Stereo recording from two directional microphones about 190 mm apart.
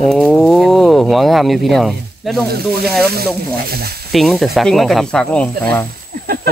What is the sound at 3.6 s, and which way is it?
Speech, 55° right (ahead or behind).